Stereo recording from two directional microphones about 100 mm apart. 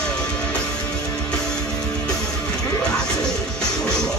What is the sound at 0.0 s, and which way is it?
Music, 10° left (ahead or behind).